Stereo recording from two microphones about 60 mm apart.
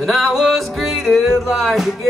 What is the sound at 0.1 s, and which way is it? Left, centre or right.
Music, centre.